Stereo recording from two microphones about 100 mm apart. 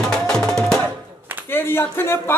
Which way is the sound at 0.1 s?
5° left (ahead or behind).